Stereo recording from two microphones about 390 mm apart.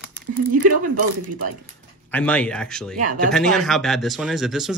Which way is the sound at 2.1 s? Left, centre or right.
Centre.